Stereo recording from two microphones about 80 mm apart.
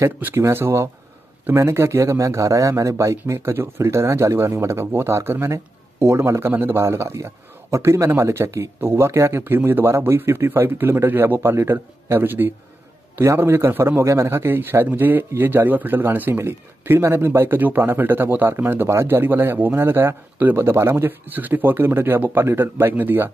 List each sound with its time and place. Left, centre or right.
0.2 s a man's voice: right